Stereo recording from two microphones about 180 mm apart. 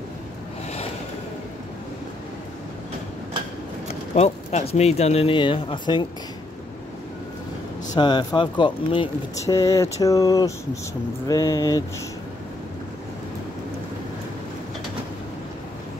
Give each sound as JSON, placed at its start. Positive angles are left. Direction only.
{"t": 4.1, "sound": "speech", "side_deg": 35}
{"t": 7.9, "sound": "speech", "side_deg": 25}
{"t": 9.4, "sound": "speech", "side_deg": 15}